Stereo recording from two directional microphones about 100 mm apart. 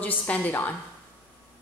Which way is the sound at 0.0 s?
15° left (ahead or behind).